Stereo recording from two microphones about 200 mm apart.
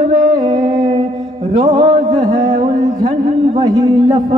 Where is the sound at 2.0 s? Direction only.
35° right (ahead or behind).